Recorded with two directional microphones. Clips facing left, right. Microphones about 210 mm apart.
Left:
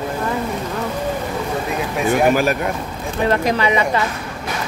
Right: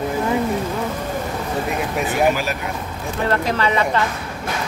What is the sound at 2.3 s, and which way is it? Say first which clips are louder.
Speech: left 6 dB; 50° left (ahead or behind).